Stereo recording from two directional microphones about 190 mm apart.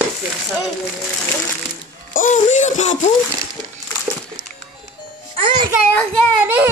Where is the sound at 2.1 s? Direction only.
40° left (ahead or behind).